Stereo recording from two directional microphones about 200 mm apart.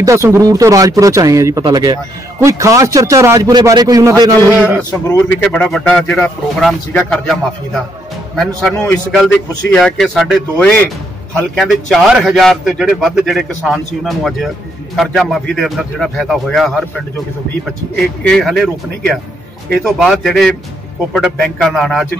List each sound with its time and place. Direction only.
0.0 s a man's voice: 15° right (ahead or behind)
5.0 s a man's voice: 10° left (ahead or behind)
17.9 s a man's voice: centre (ahead or behind)